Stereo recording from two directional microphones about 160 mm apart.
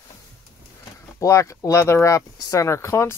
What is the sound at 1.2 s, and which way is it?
Speech, 20° left (ahead or behind).